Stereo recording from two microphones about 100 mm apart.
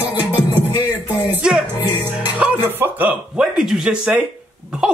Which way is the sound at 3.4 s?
5° right (ahead or behind).